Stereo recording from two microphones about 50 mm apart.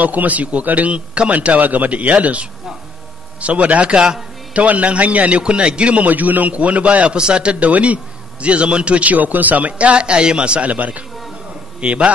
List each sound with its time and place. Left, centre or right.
0.0 s a man's voice: right; by 4.2 s centre
4.6 s a man's voice: right
6.0 s a man's voice: right